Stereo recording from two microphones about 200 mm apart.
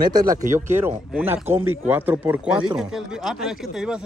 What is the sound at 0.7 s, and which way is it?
Speech, 10° right (ahead or behind).